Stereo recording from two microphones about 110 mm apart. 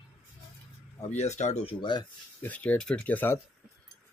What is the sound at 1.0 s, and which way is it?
Speech, 90° left.